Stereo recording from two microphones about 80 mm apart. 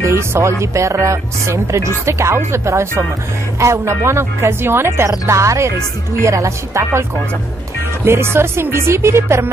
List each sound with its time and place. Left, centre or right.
0.0 s speech: right